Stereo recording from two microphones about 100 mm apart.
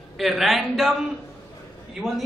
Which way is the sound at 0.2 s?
Centre (ahead or behind).